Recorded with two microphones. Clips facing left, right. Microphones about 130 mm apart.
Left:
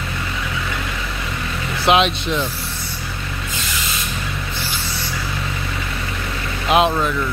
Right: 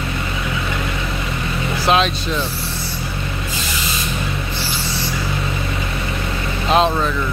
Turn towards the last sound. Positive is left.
turn(degrees=15)  # may be behind; listen again after turning